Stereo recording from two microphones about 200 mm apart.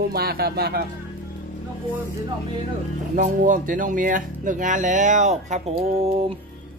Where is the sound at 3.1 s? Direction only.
40° right (ahead or behind).